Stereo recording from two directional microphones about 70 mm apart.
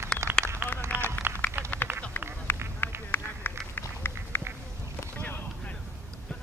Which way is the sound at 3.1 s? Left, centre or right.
Left.